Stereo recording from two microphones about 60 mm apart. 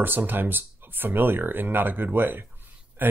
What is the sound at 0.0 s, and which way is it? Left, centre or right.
Speech, right.